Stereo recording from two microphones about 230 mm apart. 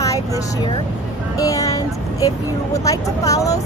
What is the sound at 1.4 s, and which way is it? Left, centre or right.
Speech, centre.